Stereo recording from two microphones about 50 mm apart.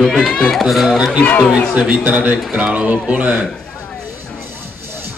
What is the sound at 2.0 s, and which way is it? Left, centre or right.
A man's voice, right.